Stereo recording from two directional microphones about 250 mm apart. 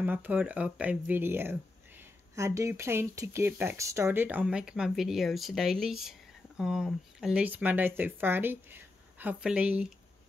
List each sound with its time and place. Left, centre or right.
0.0 s speech: centre